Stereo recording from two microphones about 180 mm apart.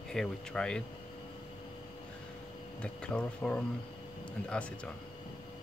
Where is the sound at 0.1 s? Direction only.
5° left (ahead or behind).